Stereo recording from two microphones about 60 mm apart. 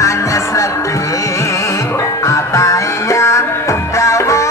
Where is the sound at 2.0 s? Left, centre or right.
Left.